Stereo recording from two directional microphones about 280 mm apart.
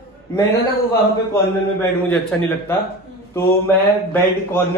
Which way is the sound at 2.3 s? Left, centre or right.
Centre.